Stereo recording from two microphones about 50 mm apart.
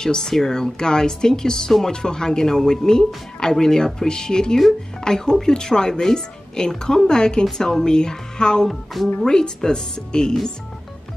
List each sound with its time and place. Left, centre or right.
0.0 s speech: centre